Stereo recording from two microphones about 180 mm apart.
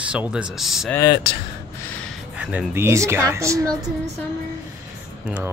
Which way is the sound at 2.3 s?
10° right (ahead or behind).